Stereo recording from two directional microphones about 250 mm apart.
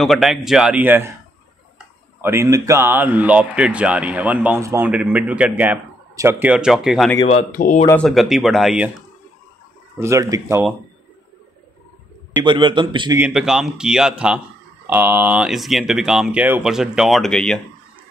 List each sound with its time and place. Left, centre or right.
0.0 s speech: centre
2.2 s speech: centre
7.2 s speech: left
7.8 s speech: centre
9.9 s speech: centre
12.4 s a man's voice: centre
13.2 s speech: centre